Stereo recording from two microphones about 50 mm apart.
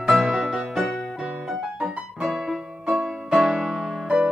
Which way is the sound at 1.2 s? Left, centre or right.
Right.